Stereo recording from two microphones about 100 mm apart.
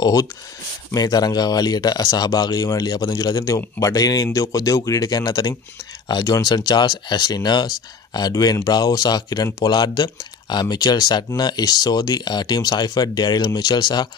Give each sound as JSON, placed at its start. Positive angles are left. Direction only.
{"t": 0.0, "sound": "speech", "side_deg": 35}